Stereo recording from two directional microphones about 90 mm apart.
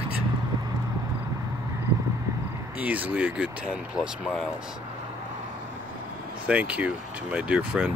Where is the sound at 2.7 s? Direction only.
15° right (ahead or behind).